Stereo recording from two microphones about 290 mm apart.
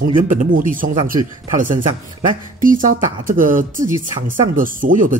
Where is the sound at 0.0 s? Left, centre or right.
Right.